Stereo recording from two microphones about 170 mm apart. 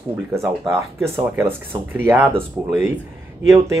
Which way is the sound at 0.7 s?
15° right (ahead or behind).